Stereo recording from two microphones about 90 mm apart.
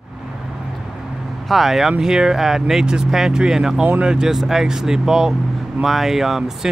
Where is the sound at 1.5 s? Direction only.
Centre (ahead or behind).